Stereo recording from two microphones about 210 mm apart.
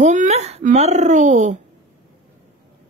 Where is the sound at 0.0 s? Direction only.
35° right (ahead or behind).